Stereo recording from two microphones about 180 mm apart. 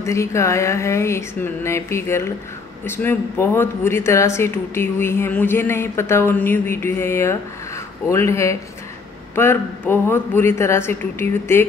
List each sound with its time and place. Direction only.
0.0 s speech: 15° left (ahead or behind)